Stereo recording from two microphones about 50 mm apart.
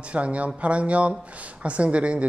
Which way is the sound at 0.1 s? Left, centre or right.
Right.